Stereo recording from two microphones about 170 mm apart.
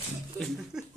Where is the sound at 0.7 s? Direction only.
5° right (ahead or behind).